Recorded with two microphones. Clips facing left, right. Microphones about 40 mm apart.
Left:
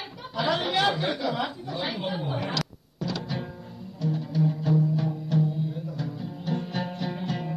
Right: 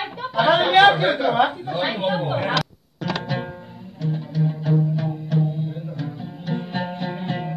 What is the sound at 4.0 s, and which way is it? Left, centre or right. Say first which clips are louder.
Music: right 2 dB; right.